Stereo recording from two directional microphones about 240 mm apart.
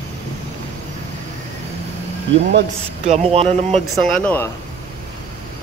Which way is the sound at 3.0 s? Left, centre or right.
Right.